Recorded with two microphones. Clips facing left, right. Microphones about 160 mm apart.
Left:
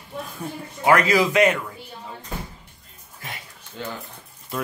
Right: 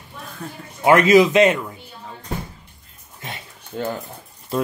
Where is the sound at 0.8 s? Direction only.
20° right (ahead or behind).